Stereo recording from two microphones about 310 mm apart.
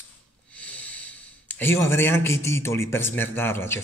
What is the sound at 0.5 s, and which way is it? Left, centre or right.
A man's voice, centre.